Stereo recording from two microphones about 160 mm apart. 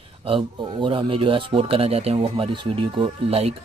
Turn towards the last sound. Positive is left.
turn(degrees=-35)  # may be behind; listen again after turning